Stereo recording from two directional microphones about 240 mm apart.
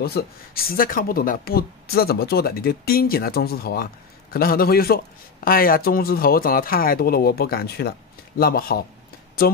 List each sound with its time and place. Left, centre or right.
0.0 s speech: left